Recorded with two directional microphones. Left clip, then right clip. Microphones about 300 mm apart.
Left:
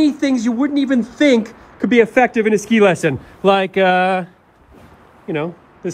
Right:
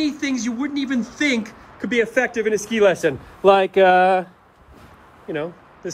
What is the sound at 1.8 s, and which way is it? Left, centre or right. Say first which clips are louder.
Speech: left 7 dB; centre.